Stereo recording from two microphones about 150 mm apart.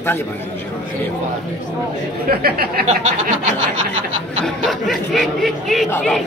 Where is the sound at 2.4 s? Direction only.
90° right.